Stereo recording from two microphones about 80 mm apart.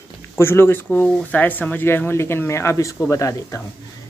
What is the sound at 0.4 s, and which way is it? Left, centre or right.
Speech, left.